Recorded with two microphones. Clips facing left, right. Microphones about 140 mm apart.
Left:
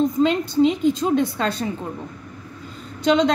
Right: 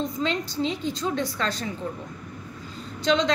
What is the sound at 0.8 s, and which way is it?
Speech, 50° left (ahead or behind).